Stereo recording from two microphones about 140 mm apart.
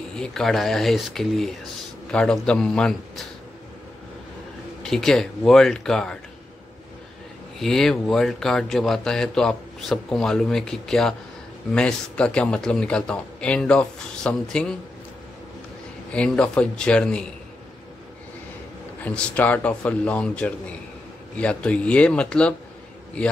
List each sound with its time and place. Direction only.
0.1 s speech: 5° left (ahead or behind)
4.8 s speech: 5° left (ahead or behind)
7.5 s a man's voice: 5° left (ahead or behind)
16.1 s a man's voice: 5° left (ahead or behind)
19.0 s a man's voice: 10° left (ahead or behind)